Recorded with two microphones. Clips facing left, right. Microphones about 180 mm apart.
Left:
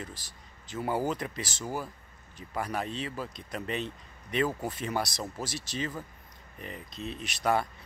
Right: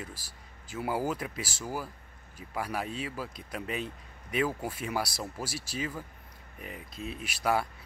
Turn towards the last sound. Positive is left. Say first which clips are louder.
# left 1 dB
turn(degrees=-5)  # may be behind; listen again after turning